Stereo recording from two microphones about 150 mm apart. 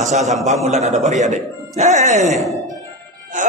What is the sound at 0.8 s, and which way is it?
Speech, 50° right (ahead or behind).